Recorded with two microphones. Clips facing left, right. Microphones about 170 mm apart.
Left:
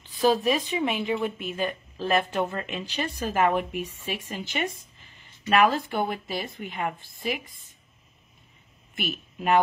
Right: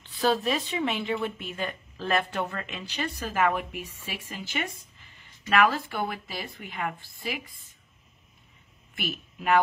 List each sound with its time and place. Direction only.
0.2 s a woman's voice: 15° left (ahead or behind)
3.8 s speech: 35° left (ahead or behind)
4.5 s a woman's voice: 20° left (ahead or behind)
8.9 s speech: 20° left (ahead or behind)